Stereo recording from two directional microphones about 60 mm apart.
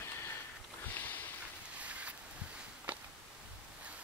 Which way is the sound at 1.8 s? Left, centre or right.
Right.